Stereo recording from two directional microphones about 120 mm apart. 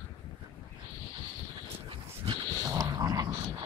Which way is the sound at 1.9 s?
40° right (ahead or behind).